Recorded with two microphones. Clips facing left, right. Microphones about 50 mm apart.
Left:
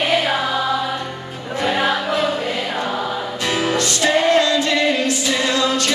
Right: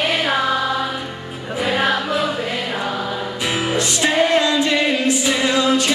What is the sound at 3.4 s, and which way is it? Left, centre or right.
Music, centre.